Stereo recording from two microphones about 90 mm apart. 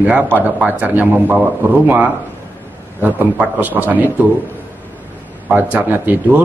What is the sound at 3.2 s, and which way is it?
Speech, 20° right (ahead or behind).